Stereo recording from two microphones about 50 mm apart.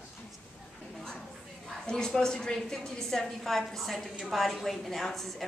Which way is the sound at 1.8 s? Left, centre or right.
Centre.